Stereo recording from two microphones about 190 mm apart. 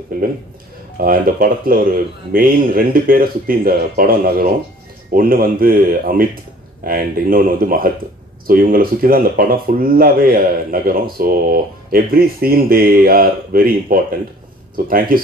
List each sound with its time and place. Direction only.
0.9 s speech: 50° right (ahead or behind)